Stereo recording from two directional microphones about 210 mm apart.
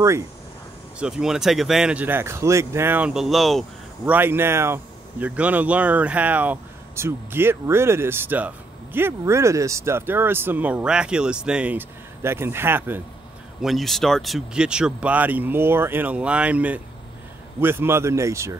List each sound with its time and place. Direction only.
0.9 s speech: 5° right (ahead or behind)